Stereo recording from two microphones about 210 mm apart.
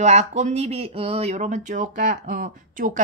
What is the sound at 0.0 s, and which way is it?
Speech, 30° right (ahead or behind).